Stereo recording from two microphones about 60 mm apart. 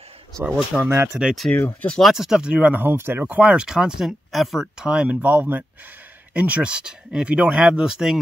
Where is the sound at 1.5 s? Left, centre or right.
Left.